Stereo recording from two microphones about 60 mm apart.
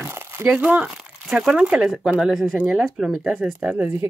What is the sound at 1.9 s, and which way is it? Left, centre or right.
Speech, centre.